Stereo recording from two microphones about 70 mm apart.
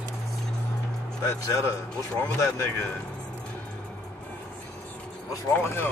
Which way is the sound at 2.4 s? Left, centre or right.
Left.